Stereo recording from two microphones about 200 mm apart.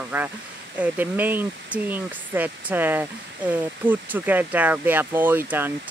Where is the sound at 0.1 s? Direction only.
10° right (ahead or behind).